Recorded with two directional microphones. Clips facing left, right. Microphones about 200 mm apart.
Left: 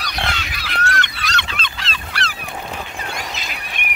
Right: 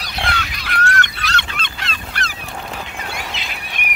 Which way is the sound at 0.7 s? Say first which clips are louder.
Right 2 dB; 55° right (ahead or behind).